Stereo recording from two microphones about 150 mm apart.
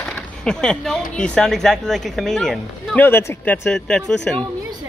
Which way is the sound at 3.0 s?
15° left (ahead or behind).